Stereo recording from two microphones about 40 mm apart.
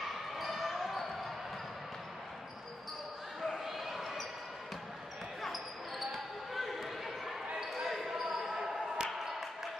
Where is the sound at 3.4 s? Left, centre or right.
Centre.